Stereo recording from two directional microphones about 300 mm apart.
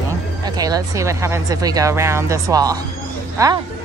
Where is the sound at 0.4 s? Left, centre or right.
Centre.